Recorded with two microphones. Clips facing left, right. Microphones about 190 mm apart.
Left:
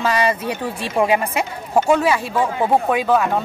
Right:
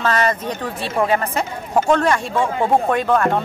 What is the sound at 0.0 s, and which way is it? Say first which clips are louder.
Speech: even; 10° left (ahead or behind).